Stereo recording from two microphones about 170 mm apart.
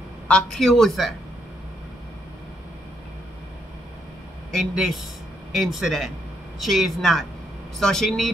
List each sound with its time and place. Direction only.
0.3 s speech: centre (ahead or behind)
4.6 s speech: centre (ahead or behind)